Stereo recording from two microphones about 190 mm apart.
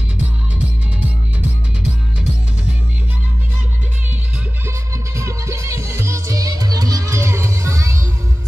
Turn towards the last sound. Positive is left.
turn(degrees=-15)  # may be behind; listen again after turning